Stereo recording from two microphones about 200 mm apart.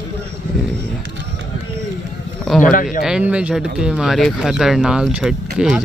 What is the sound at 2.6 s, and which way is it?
Speech, 40° left (ahead or behind).